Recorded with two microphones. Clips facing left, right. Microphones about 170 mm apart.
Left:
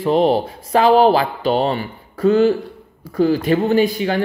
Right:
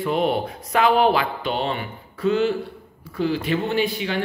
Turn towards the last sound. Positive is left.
turn(degrees=40)  # may be behind; listen again after turning